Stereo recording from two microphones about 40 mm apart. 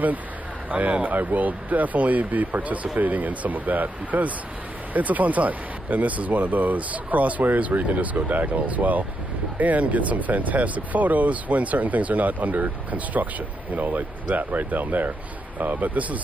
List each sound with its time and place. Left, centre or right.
0.7 s speech: right